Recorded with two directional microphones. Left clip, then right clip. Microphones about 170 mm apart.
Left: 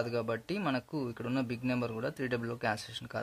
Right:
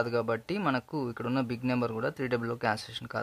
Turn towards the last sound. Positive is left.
turn(degrees=-25)  # may be behind; listen again after turning